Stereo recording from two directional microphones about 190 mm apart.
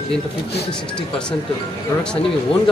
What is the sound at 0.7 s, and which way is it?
Speech, 5° left (ahead or behind).